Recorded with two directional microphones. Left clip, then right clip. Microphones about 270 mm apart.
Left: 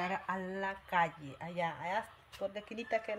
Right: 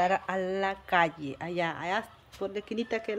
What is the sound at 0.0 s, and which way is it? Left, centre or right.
Speech, centre.